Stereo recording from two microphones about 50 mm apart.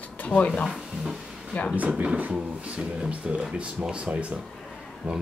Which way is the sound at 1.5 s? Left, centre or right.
Left.